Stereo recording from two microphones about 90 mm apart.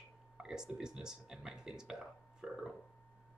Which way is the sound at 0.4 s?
5° right (ahead or behind).